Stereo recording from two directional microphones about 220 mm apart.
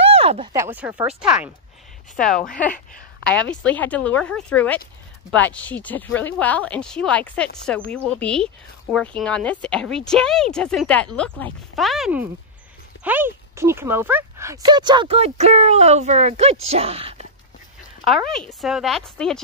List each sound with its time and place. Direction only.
0.0 s a sound: 25° right (ahead or behind)
0.5 s speech: 10° right (ahead or behind)
3.3 s speech: 5° left (ahead or behind); by 17.3 s 25° right (ahead or behind)
18.0 s speech: centre (ahead or behind)